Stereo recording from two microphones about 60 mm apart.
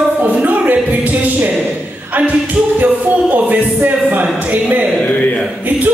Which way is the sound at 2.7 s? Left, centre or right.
Right.